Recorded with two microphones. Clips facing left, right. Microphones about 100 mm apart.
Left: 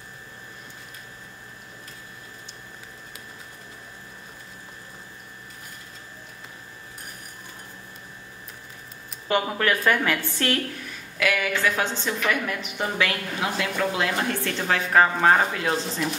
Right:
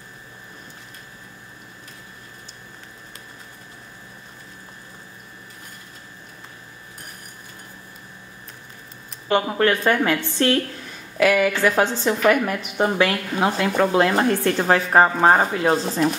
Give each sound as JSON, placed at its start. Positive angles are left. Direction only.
{"t": 9.5, "sound": "a woman's voice", "side_deg": -25}
{"t": 11.1, "sound": "a woman's voice", "side_deg": -35}